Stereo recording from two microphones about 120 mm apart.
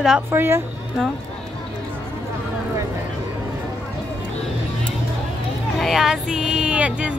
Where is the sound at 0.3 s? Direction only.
20° right (ahead or behind).